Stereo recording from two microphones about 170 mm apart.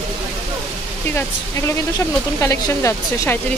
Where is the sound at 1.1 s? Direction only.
10° left (ahead or behind).